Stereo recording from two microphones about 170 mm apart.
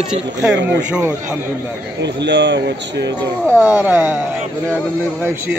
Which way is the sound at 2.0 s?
90° right.